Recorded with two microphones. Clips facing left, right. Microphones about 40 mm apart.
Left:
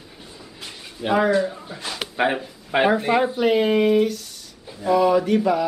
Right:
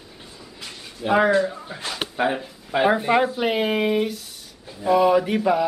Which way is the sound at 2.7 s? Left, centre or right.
Left.